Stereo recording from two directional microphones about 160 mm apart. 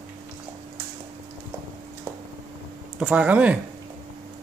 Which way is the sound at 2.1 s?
20° right (ahead or behind).